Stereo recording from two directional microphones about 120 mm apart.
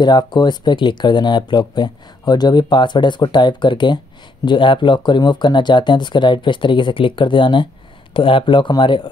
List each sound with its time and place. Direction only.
0.0 s speech: 40° left (ahead or behind)